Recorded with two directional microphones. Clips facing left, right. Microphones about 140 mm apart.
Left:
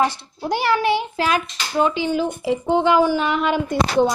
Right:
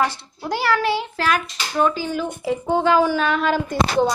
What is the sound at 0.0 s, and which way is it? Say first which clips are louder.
A woman's voice: left 2 dB; 20° left (ahead or behind).